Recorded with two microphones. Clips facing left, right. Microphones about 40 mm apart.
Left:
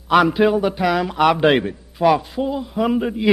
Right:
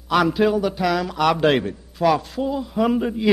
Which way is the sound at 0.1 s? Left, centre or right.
Left.